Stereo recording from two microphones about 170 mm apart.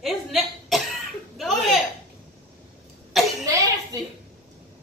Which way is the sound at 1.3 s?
Centre (ahead or behind).